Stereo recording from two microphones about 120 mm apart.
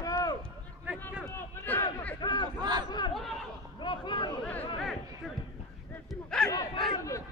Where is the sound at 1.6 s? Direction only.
15° left (ahead or behind).